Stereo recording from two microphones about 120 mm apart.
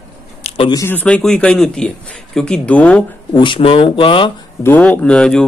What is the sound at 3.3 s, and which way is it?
Speech, 40° left (ahead or behind).